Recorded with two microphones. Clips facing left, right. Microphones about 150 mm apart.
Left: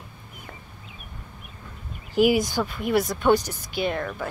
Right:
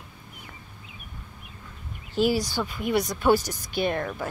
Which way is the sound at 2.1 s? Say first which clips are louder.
Left 4 dB; 15° left (ahead or behind).